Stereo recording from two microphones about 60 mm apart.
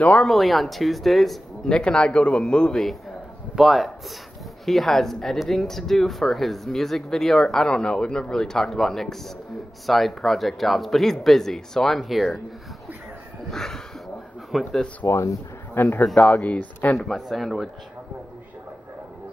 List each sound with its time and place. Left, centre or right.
0.2 s speech: centre
3.5 s speech: centre
13.5 s a sound: centre
14.5 s speech: centre
15.0 s speech: left
16.2 s speech: left
17.0 s speech: centre